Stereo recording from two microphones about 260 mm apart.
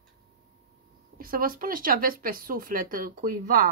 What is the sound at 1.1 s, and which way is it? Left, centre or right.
Speech, right.